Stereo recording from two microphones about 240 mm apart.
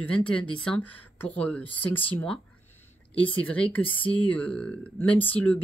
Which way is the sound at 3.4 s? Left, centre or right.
Centre.